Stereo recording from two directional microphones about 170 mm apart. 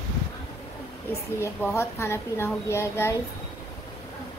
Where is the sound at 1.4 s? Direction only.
15° left (ahead or behind).